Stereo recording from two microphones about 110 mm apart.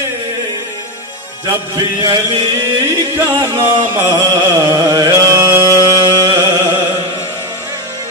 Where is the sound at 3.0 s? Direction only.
40° right (ahead or behind).